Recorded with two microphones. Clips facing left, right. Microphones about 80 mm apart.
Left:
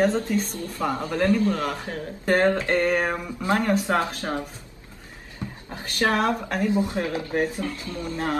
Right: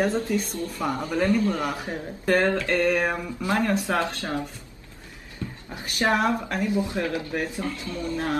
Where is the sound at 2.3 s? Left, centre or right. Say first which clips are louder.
Left 1 dB; left.